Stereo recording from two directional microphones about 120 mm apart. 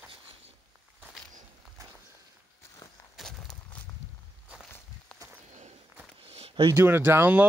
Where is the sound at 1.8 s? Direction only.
25° right (ahead or behind).